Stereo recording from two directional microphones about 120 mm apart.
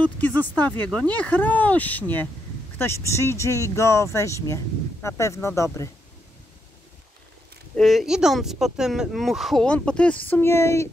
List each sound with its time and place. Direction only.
0.0 s speech: 15° left (ahead or behind)
7.7 s speech: centre (ahead or behind); by 10.9 s 20° left (ahead or behind)